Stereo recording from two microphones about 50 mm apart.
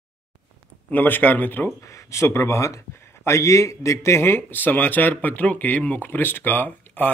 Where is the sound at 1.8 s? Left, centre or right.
Left.